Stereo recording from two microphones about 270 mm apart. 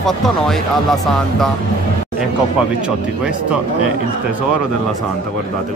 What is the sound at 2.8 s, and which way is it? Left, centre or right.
Speech, centre.